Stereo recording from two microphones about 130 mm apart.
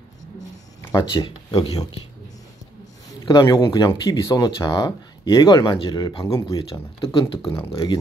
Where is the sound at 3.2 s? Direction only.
30° left (ahead or behind).